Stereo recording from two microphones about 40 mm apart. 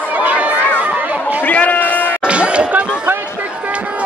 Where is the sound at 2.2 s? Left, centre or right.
Right.